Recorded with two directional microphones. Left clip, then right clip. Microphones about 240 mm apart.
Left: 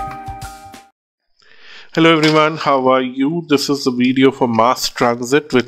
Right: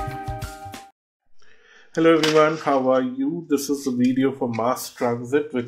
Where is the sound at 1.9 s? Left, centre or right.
Left.